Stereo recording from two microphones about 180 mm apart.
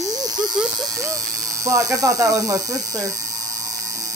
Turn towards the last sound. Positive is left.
turn(degrees=-20)  # may be behind; listen again after turning